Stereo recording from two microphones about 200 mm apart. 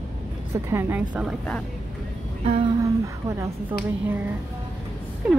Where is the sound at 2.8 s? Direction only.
15° right (ahead or behind).